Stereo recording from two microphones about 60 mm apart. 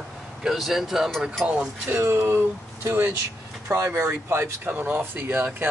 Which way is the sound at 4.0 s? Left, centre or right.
Right.